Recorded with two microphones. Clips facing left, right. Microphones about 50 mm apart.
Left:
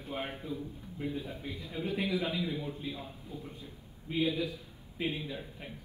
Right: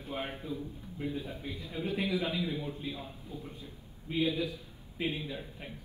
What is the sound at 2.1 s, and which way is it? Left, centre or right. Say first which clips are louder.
Speech: even; centre.